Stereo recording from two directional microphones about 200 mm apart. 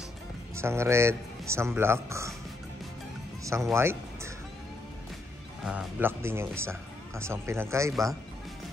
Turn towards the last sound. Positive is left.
turn(degrees=-15)  # may be behind; listen again after turning